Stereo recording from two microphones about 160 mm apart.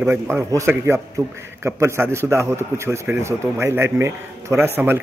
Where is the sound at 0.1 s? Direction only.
15° right (ahead or behind).